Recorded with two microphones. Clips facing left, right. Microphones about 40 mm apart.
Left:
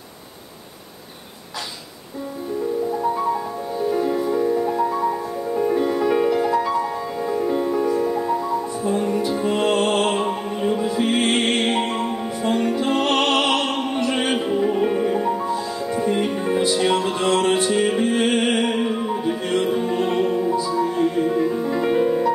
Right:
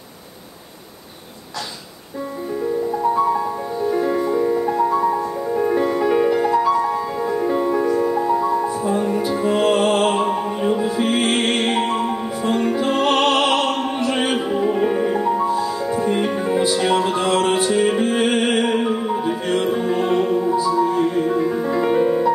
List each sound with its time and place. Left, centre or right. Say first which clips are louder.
3.8 s music: right 2 dB; centre